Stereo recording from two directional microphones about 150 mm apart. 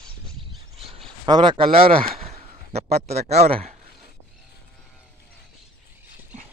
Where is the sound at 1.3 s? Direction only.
30° right (ahead or behind).